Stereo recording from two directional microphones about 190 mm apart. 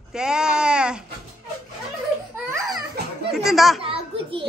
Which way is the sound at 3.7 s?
30° right (ahead or behind).